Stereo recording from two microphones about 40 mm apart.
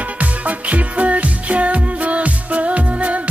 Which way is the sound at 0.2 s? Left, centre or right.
Right.